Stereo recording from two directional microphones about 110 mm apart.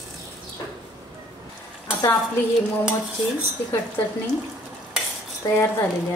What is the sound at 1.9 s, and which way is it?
Stir, 20° left (ahead or behind).